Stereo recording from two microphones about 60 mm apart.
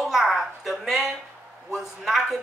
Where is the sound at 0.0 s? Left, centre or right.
Centre.